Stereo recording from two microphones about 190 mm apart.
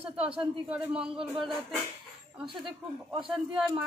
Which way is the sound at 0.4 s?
5° right (ahead or behind).